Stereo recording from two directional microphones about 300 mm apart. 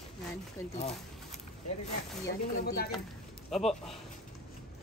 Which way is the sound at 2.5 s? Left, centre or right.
Left.